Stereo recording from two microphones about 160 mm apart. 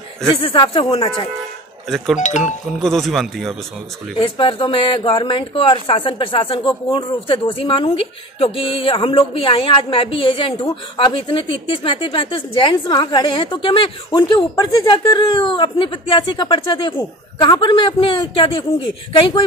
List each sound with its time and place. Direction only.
0.4 s speech: 35° left (ahead or behind)
1.9 s speech: centre (ahead or behind)
4.2 s speech: 35° left (ahead or behind)